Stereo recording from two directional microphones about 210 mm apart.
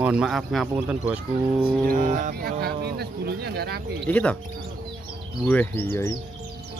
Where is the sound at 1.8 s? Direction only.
40° right (ahead or behind).